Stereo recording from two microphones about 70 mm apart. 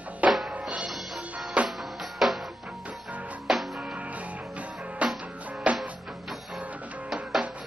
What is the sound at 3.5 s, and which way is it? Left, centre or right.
Music, centre.